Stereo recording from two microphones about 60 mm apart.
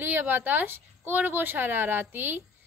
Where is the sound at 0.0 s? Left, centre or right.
Right.